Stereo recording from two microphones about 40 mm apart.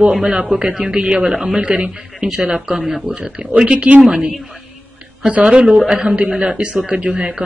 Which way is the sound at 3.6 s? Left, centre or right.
Right.